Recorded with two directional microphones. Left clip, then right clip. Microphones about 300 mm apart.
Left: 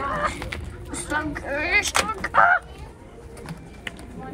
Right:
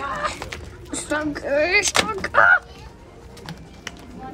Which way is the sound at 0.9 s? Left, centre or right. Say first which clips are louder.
Right 2 dB; centre.